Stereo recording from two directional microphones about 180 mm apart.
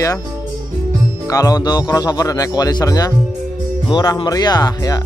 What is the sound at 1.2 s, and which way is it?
Speech, 20° left (ahead or behind).